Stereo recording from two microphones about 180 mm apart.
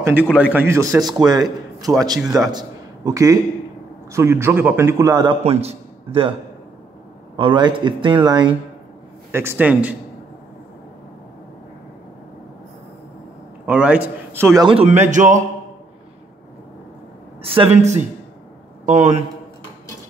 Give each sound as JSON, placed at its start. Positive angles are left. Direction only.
{"t": 0.0, "sound": "a man's voice", "side_deg": -10}
{"t": 5.4, "sound": "a man's voice", "side_deg": -35}
{"t": 7.3, "sound": "speech", "side_deg": -25}
{"t": 9.3, "sound": "a man's voice", "side_deg": -15}
{"t": 13.7, "sound": "a man's voice", "side_deg": -10}
{"t": 14.7, "sound": "a man's voice", "side_deg": -35}
{"t": 17.4, "sound": "a man's voice", "side_deg": -30}